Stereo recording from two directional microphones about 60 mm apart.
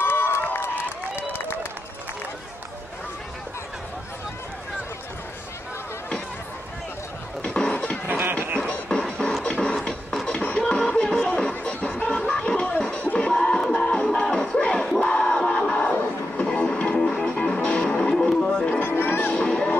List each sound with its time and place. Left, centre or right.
0.0 s crowd: left
7.4 s a sound: centre
7.7 s music: left
8.1 s music: right
8.6 s music: centre
9.0 s music: centre
9.4 s music: centre
11.5 s a sound: left
13.0 s music: left
15.0 s crowd: centre
16.7 s music: centre
18.9 s music: left
19.3 s crowd: centre